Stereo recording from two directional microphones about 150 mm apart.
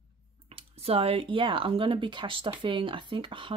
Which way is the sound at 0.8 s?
40° right (ahead or behind).